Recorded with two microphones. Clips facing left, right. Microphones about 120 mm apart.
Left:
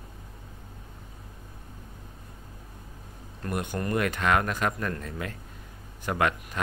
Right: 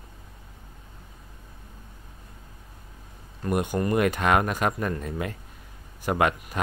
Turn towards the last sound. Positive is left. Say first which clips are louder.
# right 3 dB
turn(degrees=-20)  # may be behind; listen again after turning